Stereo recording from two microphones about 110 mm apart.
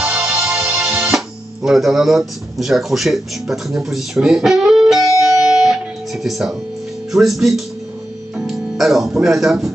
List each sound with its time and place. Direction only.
0.0 s music: 10° right (ahead or behind)
7.1 s speech: centre (ahead or behind)